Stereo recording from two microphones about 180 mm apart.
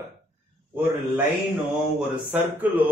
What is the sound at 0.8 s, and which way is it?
Speech, 10° right (ahead or behind).